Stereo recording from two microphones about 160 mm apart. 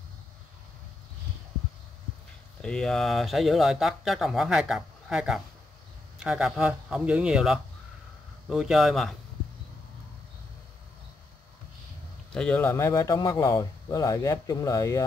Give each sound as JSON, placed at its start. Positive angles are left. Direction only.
{"t": 2.6, "sound": "speech", "side_deg": 5}
{"t": 12.3, "sound": "a man's voice", "side_deg": 5}